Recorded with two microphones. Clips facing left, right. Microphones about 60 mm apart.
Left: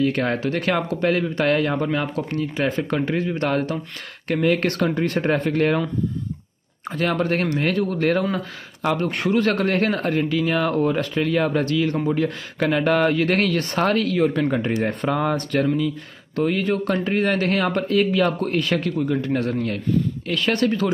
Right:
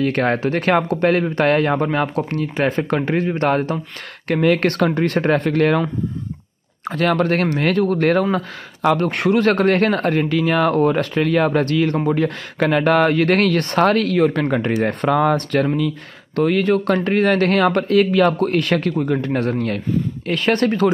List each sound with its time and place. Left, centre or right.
0.0 s speech: right
4.3 s speech: right
12.1 s speech: right
15.3 s speech: right